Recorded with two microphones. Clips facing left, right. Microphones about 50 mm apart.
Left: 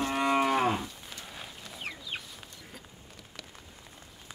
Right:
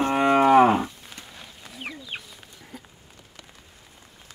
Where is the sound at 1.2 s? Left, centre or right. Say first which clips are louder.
Left 1 dB; centre.